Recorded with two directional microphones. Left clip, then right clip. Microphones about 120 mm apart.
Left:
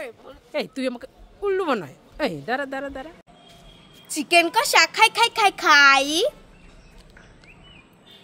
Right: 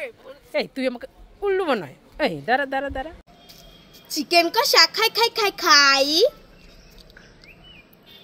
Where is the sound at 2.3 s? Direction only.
15° right (ahead or behind).